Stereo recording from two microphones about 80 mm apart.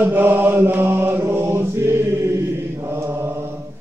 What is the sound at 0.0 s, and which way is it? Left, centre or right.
Mantra, right.